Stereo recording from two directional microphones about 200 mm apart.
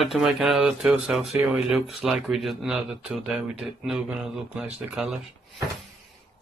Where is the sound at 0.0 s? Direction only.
Centre (ahead or behind).